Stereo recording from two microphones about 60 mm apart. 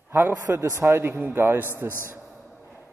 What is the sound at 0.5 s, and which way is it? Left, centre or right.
A man's voice, right.